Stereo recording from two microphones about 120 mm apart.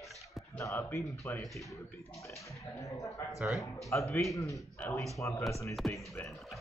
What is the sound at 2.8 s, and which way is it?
Speech, 25° left (ahead or behind).